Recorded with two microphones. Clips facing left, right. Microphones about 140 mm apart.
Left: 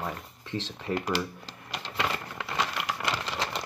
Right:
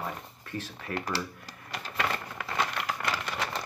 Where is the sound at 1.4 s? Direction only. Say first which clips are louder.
Left 1 dB; 90° left.